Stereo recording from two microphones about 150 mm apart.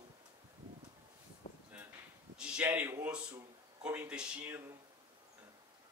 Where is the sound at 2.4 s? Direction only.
5° right (ahead or behind).